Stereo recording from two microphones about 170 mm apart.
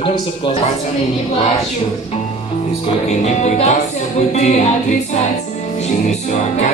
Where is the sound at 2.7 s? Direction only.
40° left (ahead or behind).